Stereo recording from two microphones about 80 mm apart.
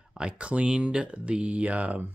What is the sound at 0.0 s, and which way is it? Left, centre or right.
Speech, centre.